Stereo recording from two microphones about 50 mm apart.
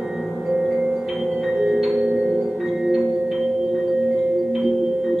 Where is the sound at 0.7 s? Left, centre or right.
Centre.